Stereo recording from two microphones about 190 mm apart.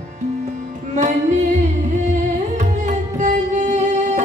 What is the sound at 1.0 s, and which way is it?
Music, 40° right (ahead or behind).